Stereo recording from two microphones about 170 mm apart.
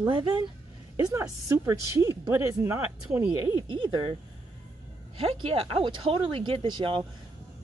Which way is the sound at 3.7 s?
25° right (ahead or behind).